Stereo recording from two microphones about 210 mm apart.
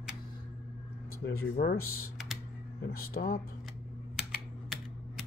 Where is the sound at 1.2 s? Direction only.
45° left (ahead or behind).